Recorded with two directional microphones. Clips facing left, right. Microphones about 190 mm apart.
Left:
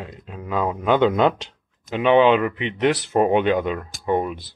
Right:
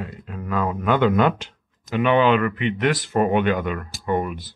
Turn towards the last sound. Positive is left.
turn(degrees=20)  # may be behind; listen again after turning